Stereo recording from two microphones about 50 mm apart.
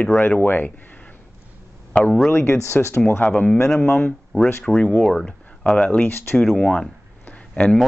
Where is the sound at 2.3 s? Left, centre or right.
Left.